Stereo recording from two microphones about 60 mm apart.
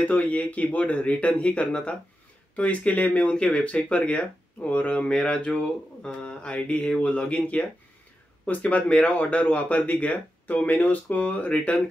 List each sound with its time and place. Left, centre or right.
0.0 s speech: left